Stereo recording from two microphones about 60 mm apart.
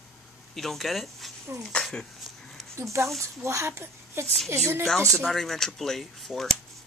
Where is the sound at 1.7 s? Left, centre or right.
Centre.